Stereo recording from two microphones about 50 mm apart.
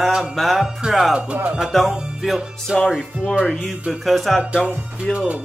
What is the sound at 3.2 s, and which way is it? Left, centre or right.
Speech, left.